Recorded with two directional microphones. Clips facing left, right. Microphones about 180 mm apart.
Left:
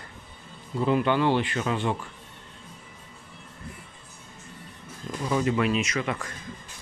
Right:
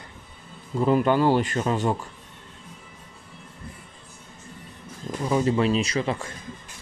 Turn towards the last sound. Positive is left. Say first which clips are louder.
# right 3 dB
turn(degrees=-30)  # may be behind; listen again after turning